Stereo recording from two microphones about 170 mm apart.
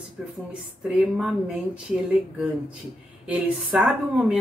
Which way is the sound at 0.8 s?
5° right (ahead or behind).